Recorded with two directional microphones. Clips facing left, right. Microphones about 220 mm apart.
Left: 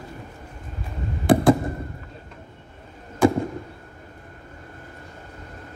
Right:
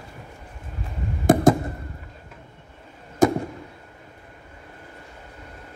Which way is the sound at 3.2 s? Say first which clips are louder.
Even; 40° right (ahead or behind).